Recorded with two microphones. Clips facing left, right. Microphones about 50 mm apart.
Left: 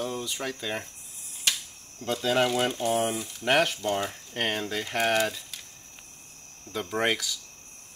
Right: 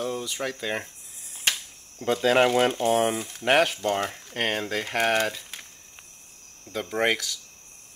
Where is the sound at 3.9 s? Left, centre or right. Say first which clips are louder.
Right 2 dB; right.